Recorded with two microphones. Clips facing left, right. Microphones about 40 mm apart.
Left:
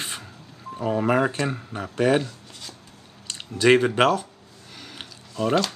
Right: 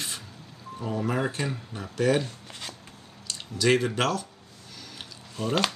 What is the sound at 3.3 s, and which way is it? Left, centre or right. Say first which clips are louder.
Speech: left 6 dB; left.